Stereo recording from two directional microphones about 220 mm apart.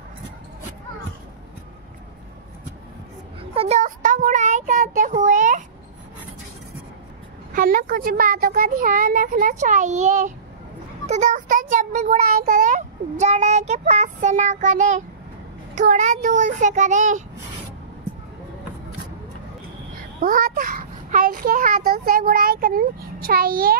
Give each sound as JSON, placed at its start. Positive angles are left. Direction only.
{"t": 3.5, "sound": "child singing", "side_deg": -30}
{"t": 7.5, "sound": "a child's voice", "side_deg": -40}
{"t": 20.2, "sound": "a child's voice", "side_deg": -40}